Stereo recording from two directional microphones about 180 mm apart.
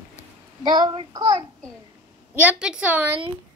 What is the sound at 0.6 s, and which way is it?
Speech, 25° right (ahead or behind).